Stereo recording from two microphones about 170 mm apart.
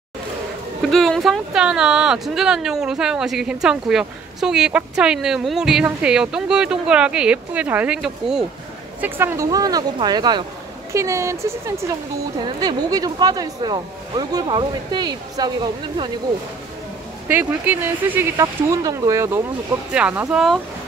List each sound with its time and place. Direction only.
0.8 s speech: 5° left (ahead or behind)
9.0 s speech: 15° right (ahead or behind)
17.3 s speech: 10° right (ahead or behind)